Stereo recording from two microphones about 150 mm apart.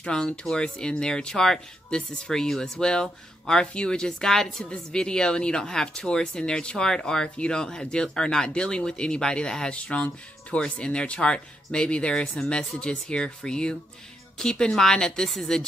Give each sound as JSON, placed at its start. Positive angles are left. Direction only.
{"t": 0.0, "sound": "speech", "side_deg": 5}